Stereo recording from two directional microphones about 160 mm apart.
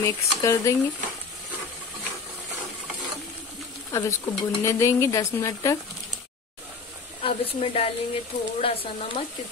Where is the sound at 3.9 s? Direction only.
20° left (ahead or behind).